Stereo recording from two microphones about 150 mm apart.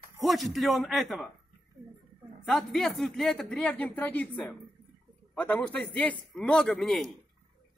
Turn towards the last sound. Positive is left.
turn(degrees=5)  # may be behind; listen again after turning